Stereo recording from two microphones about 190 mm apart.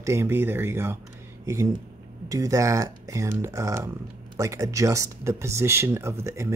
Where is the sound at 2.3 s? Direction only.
15° right (ahead or behind).